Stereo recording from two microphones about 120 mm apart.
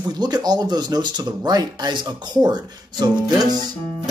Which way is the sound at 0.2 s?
35° right (ahead or behind).